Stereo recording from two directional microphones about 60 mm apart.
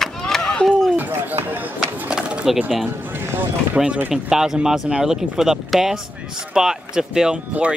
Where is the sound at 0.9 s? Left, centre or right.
Right.